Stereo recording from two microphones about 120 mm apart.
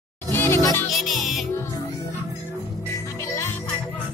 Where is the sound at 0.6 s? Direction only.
30° left (ahead or behind).